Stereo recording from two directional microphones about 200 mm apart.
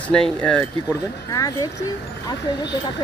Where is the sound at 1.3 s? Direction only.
20° left (ahead or behind).